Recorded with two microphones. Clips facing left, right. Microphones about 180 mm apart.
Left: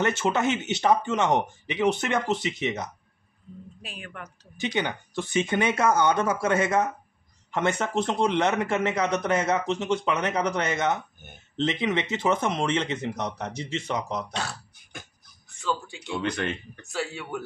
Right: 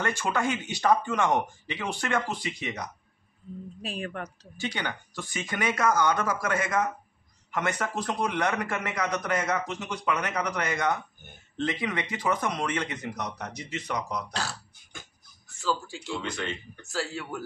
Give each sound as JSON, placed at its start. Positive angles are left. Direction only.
{"t": 0.0, "sound": "a man's voice", "side_deg": 20}
{"t": 3.8, "sound": "a woman's voice", "side_deg": -35}
{"t": 4.6, "sound": "a man's voice", "side_deg": 20}
{"t": 14.3, "sound": "speech", "side_deg": 0}
{"t": 15.6, "sound": "speech", "side_deg": -5}
{"t": 16.2, "sound": "speech", "side_deg": 60}
{"t": 16.8, "sound": "speech", "side_deg": 0}